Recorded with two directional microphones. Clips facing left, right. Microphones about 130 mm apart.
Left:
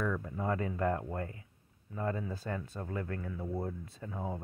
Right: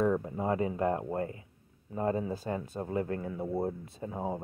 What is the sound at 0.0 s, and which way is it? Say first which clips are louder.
Speech: right 6 dB; 30° right (ahead or behind).